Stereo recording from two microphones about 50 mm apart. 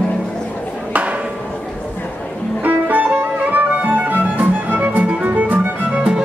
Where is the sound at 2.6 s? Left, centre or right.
Right.